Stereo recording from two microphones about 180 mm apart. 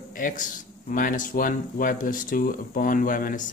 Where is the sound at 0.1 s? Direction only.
50° left (ahead or behind).